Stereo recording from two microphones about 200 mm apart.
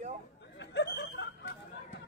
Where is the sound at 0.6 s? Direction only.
60° left (ahead or behind).